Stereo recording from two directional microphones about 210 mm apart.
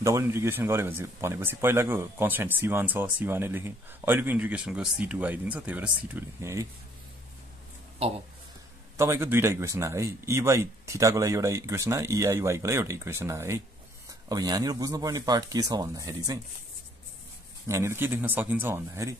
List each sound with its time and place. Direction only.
0.0 s speech: 15° right (ahead or behind)
8.9 s speech: 10° right (ahead or behind)
17.6 s speech: 15° right (ahead or behind)